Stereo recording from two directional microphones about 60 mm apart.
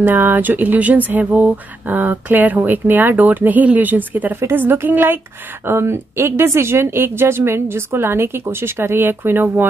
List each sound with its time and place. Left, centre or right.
0.0 s speech: right
4.4 s speech: right